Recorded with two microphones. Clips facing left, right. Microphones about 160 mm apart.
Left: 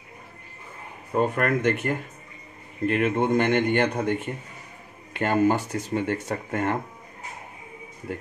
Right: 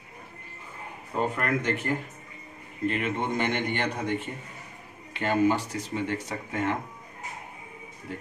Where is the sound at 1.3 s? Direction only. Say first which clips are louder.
Left 5 dB; 60° left (ahead or behind).